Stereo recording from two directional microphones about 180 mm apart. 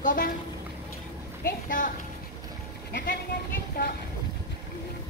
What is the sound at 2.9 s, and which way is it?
Speech, 65° left (ahead or behind).